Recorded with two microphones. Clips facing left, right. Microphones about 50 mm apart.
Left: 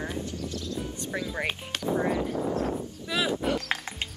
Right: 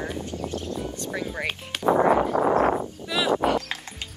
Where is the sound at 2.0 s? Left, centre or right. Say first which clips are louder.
Right 8 dB; right.